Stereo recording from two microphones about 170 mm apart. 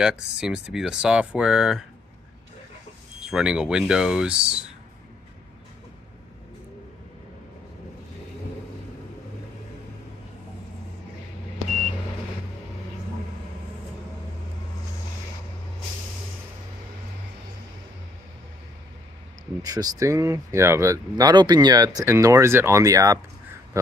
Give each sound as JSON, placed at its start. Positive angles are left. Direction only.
{"t": 0.0, "sound": "speech", "side_deg": -5}
{"t": 3.3, "sound": "speech", "side_deg": -5}
{"t": 19.6, "sound": "speech", "side_deg": -20}